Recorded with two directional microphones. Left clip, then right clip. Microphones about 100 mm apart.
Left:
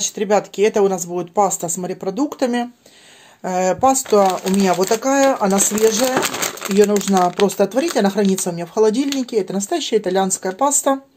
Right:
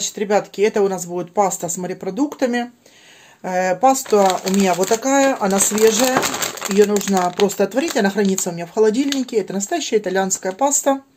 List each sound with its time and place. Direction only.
0.0 s speech: 35° left (ahead or behind)